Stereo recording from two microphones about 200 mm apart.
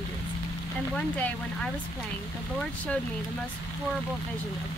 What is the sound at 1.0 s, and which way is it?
Speech, 5° left (ahead or behind).